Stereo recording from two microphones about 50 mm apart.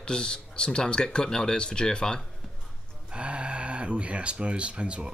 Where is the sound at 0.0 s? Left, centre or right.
Centre.